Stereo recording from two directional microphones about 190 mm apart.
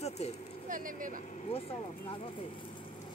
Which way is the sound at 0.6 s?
45° right (ahead or behind).